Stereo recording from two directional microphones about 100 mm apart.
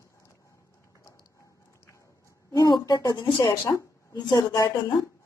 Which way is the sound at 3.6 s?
25° left (ahead or behind).